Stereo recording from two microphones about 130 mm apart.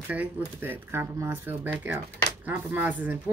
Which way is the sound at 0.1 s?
15° right (ahead or behind).